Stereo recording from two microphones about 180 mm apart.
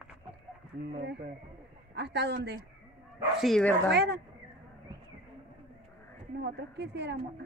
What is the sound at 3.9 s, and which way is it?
Speech, 65° right (ahead or behind).